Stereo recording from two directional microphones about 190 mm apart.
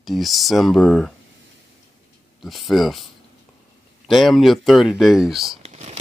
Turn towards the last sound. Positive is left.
turn(degrees=-35)  # may be behind; listen again after turning